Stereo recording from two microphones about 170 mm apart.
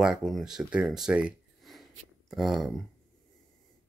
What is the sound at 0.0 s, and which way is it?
Speech, 5° right (ahead or behind).